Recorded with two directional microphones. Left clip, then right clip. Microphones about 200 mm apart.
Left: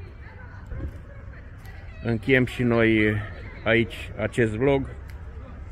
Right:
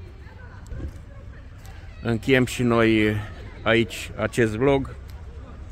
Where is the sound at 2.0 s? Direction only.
15° right (ahead or behind).